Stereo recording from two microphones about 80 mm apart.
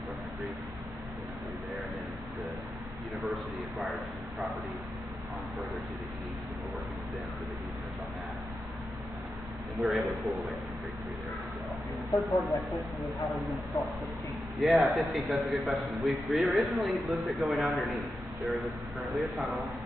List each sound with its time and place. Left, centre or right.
3.2 s a sound: centre
9.8 s a man's voice: centre
12.2 s a man's voice: centre
14.6 s a man's voice: centre